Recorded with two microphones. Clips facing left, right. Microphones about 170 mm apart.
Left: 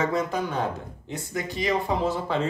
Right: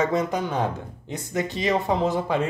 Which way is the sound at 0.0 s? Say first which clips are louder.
Right 2 dB; 20° right (ahead or behind).